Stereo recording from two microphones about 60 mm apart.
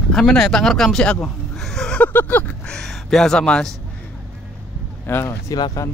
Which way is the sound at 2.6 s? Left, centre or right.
Centre.